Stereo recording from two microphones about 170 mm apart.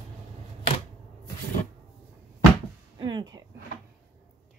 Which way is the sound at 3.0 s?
25° right (ahead or behind).